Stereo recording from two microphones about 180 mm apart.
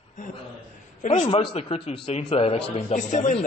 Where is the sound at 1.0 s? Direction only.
40° left (ahead or behind).